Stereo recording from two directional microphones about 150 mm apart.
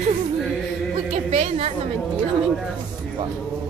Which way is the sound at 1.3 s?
50° right (ahead or behind).